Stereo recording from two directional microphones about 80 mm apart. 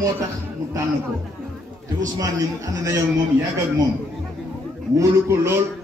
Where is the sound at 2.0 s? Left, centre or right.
Right.